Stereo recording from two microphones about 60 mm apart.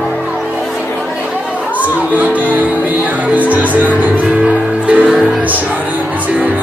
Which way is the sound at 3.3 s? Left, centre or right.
Right.